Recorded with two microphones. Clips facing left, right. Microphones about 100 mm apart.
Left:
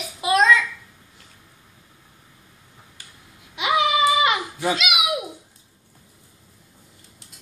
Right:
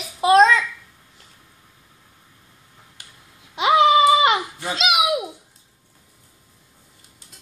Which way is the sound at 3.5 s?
30° right (ahead or behind).